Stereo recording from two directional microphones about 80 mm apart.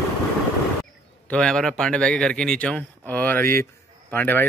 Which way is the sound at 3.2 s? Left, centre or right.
Left.